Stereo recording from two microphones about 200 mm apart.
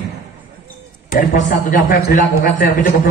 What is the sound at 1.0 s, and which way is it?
A man's voice, 40° left (ahead or behind).